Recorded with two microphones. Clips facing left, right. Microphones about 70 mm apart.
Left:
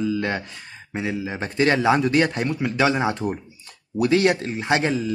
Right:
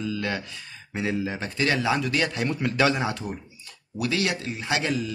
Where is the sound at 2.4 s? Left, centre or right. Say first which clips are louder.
Left 2 dB; centre.